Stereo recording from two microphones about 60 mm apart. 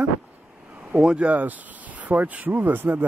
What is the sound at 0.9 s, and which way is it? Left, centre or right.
Speech, centre.